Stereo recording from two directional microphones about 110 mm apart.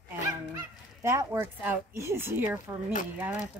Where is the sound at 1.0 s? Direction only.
25° right (ahead or behind).